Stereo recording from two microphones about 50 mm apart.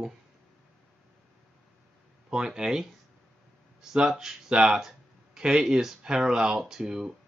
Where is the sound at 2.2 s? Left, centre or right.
Centre.